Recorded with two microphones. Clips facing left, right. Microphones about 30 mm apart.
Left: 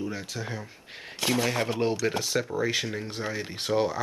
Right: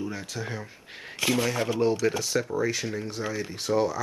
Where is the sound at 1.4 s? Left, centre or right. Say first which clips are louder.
Even; left.